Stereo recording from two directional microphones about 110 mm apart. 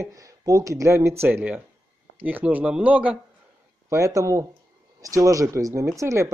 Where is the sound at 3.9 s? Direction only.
30° right (ahead or behind).